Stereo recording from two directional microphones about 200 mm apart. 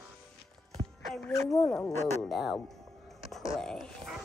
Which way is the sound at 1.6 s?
Centre (ahead or behind).